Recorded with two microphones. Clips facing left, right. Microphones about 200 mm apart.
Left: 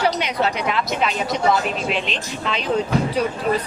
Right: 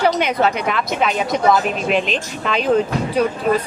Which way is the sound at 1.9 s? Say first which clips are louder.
Right 6 dB; 45° right (ahead or behind).